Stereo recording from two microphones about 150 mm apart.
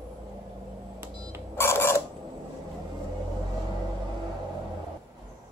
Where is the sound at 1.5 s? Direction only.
15° left (ahead or behind).